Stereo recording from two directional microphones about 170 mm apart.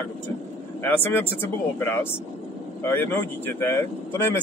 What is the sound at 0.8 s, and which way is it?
Speech, 10° left (ahead or behind).